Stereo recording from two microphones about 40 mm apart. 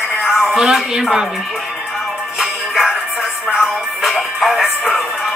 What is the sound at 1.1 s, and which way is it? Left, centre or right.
Speech, centre.